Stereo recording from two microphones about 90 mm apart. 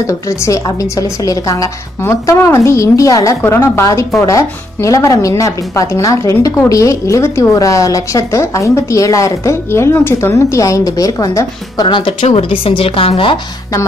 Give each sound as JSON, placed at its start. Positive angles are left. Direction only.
{"t": 0.7, "sound": "speech", "side_deg": 40}
{"t": 11.9, "sound": "a woman's voice", "side_deg": 70}